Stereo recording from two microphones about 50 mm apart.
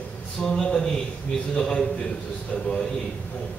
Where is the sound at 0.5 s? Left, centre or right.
Centre.